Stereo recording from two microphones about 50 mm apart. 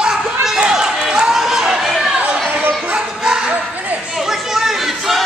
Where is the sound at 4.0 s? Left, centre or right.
Centre.